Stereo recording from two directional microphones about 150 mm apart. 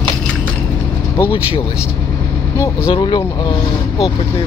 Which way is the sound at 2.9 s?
30° left (ahead or behind).